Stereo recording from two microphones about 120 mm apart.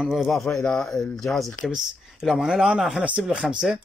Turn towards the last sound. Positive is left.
turn(degrees=-5)  # may be behind; listen again after turning